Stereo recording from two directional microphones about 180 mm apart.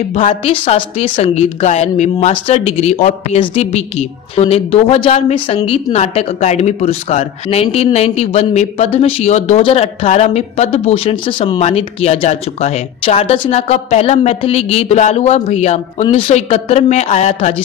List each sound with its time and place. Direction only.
0.1 s a woman's voice: 35° left (ahead or behind)